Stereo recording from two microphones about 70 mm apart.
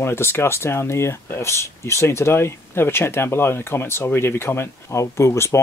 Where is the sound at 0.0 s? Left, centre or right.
Left.